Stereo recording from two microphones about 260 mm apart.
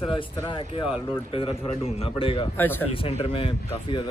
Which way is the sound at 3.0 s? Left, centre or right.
Left.